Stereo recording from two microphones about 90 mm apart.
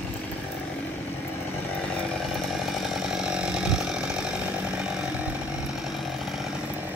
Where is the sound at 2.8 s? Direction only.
5° right (ahead or behind).